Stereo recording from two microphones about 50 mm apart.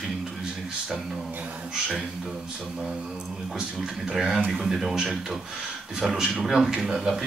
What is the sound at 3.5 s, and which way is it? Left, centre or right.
A man's voice, centre.